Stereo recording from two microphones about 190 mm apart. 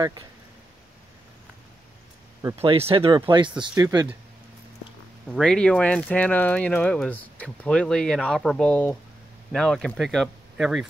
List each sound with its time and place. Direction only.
2.6 s speech: 30° right (ahead or behind)
5.3 s speech: 5° left (ahead or behind)